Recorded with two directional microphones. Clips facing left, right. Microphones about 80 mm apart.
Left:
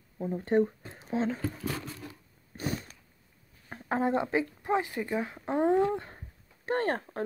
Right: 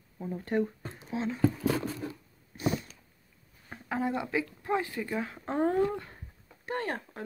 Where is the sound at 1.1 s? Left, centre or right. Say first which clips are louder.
Left 3 dB; left.